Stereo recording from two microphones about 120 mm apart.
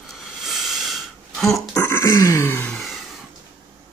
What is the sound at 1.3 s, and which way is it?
Burping, centre (ahead or behind).